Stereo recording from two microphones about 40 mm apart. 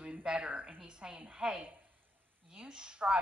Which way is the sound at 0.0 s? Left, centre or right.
Right.